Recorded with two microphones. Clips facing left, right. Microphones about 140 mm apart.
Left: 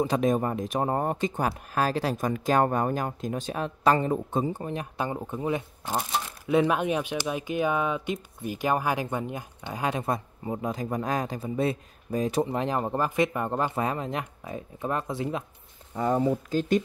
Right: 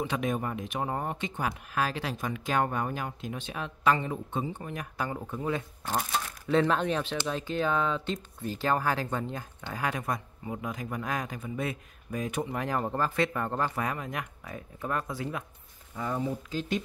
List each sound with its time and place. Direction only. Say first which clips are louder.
0.0 s speech: left 6 dB; 35° left (ahead or behind)
12.6 s speech: left 3 dB; 20° left (ahead or behind)
16.0 s speech: left 7 dB; 40° left (ahead or behind)